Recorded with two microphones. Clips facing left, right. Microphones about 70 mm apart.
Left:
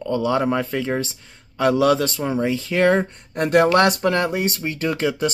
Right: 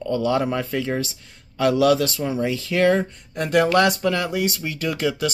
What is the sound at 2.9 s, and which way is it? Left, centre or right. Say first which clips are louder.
Speech: left 1 dB; left.